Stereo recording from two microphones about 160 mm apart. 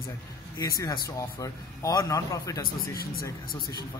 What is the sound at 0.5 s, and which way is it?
A man's voice, 20° left (ahead or behind).